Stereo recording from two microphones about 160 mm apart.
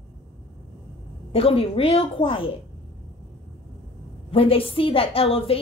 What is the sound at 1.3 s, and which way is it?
A woman's voice, 35° left (ahead or behind).